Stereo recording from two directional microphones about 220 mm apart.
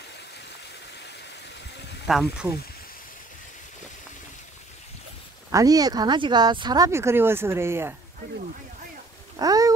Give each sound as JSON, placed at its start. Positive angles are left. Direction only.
{"t": 2.0, "sound": "speech", "side_deg": -5}
{"t": 5.5, "sound": "speech", "side_deg": -15}
{"t": 9.4, "sound": "speech", "side_deg": -15}